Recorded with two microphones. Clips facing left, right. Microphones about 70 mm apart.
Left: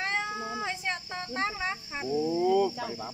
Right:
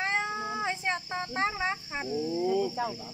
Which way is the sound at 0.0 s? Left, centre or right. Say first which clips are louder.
Right 1 dB; centre.